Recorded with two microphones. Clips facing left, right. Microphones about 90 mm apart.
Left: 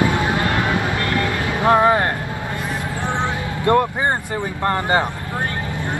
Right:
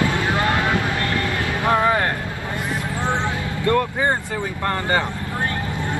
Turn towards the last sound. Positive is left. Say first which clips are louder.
# left 3 dB
turn(degrees=20)  # may be behind; listen again after turning